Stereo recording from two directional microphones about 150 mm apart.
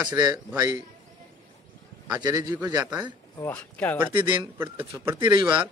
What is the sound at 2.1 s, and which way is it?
Speech, 25° right (ahead or behind).